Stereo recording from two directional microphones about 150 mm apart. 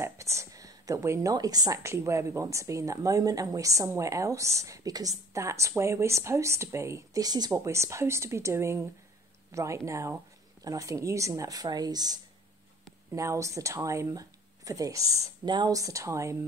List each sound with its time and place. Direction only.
0.0 s speech: 20° right (ahead or behind)